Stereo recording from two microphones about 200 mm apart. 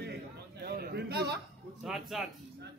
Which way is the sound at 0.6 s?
50° right (ahead or behind).